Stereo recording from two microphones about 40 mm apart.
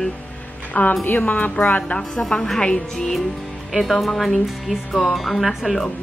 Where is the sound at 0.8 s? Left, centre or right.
Left.